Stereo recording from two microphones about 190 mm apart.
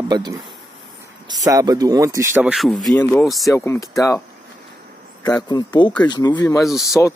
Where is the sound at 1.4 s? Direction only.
20° right (ahead or behind).